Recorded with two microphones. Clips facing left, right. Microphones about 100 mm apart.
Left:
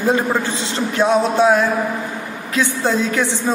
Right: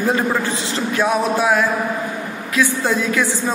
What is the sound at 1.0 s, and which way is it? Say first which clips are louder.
A man's voice: left 4 dB; 25° left (ahead or behind).